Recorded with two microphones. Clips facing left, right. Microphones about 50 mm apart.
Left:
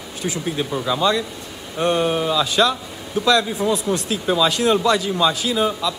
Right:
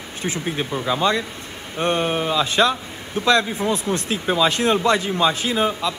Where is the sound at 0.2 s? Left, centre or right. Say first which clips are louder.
Left 1 dB; right.